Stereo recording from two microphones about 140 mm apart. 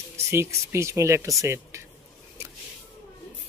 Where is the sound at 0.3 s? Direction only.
20° right (ahead or behind).